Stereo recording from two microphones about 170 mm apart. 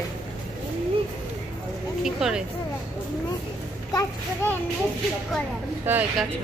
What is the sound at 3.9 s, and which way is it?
Speech, 20° left (ahead or behind).